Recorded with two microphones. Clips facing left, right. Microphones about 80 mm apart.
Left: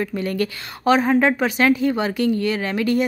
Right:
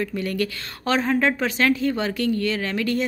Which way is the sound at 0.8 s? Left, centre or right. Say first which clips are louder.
Left 5 dB; centre.